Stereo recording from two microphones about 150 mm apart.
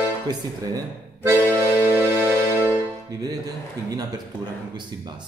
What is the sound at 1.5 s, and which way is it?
Music, 10° left (ahead or behind).